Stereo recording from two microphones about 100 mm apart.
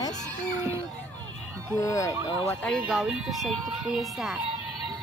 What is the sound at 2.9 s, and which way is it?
Speech, 5° right (ahead or behind).